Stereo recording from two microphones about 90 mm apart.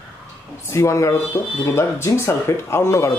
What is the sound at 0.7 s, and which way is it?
Speech, 35° left (ahead or behind).